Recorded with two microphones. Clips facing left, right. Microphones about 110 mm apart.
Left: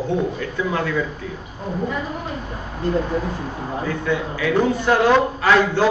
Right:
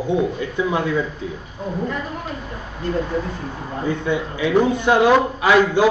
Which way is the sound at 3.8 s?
20° right (ahead or behind).